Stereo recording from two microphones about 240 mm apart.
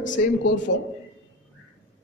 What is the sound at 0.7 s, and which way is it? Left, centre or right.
Speech, left.